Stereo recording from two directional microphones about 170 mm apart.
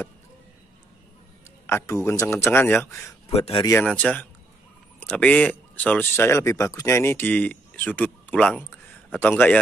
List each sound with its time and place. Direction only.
1.7 s a man's voice: 15° left (ahead or behind)
3.3 s speech: 35° left (ahead or behind)
3.8 s a man's voice: 5° left (ahead or behind)